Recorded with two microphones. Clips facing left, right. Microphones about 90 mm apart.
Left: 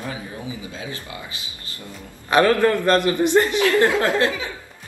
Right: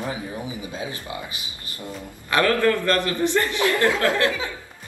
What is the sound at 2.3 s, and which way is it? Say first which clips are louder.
Speech: left 3 dB; 20° left (ahead or behind).